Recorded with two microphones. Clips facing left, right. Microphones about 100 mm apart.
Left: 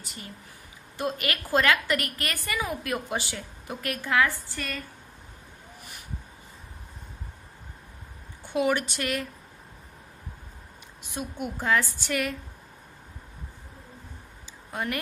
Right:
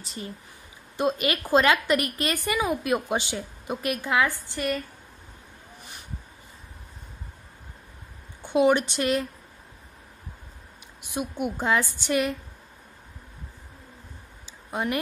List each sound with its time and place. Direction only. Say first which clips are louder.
0.0 s a woman's voice: right 5 dB; 30° right (ahead or behind)
8.4 s speech: right 5 dB; 20° right (ahead or behind)
11.0 s a woman's voice: right 4 dB; 15° right (ahead or behind)
14.7 s speech: right 3 dB; 20° right (ahead or behind)